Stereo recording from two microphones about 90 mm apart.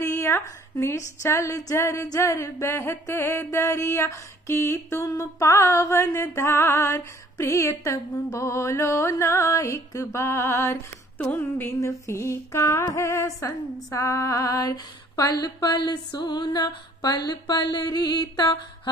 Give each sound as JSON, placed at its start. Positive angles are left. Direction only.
{"t": 0.0, "sound": "speech", "side_deg": 30}
{"t": 13.8, "sound": "female singing", "side_deg": 35}